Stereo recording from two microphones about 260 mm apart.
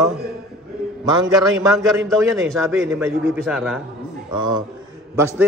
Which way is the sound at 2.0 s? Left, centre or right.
Centre.